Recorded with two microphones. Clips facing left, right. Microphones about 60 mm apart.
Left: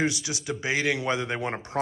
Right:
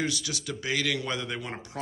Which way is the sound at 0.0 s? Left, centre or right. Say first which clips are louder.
Left 4 dB; left.